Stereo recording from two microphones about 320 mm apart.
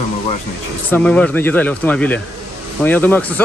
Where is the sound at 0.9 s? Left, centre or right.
Centre.